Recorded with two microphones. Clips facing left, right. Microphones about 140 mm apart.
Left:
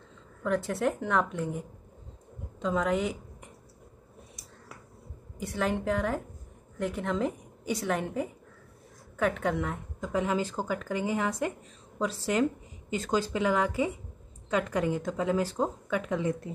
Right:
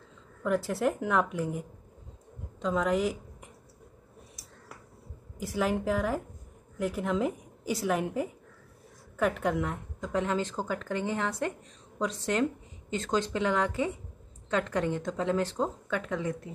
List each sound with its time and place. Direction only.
0.4 s a woman's voice: 5° right (ahead or behind)
5.4 s a woman's voice: 5° right (ahead or behind); by 16.3 s 15° left (ahead or behind)